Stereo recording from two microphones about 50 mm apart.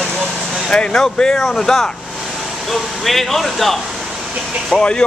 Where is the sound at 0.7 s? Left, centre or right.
Centre.